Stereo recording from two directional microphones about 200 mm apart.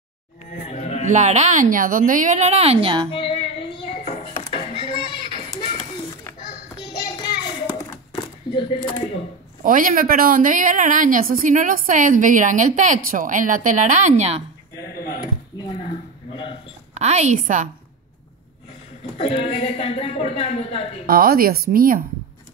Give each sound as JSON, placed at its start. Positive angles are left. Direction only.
{"t": 0.7, "sound": "a sound", "side_deg": 35}
{"t": 1.0, "sound": "a woman's voice", "side_deg": -35}
{"t": 3.1, "sound": "music", "side_deg": 25}
{"t": 6.8, "sound": "a sound", "side_deg": 20}
{"t": 9.6, "sound": "a woman's voice", "side_deg": -40}
{"t": 16.9, "sound": "a woman's voice", "side_deg": -35}
{"t": 19.1, "sound": "a woman's voice", "side_deg": 30}
{"t": 21.1, "sound": "speech", "side_deg": -45}